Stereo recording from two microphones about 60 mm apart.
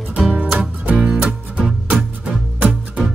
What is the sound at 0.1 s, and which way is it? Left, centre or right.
Music, right.